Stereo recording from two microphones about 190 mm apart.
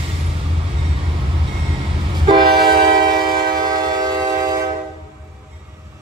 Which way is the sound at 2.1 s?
25° right (ahead or behind).